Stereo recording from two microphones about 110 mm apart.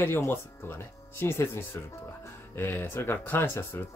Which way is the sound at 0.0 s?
20° left (ahead or behind).